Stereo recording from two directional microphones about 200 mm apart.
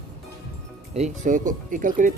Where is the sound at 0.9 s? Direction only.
35° right (ahead or behind).